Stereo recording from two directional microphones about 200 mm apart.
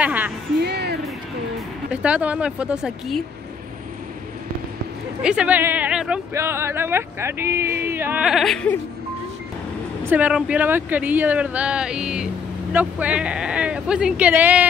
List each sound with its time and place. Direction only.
0.0 s music: 10° right (ahead or behind)
0.6 s music: 55° right (ahead or behind)
1.9 s speech: 5° right (ahead or behind)
5.2 s speech: 5° right (ahead or behind)
10.0 s speech: 5° right (ahead or behind)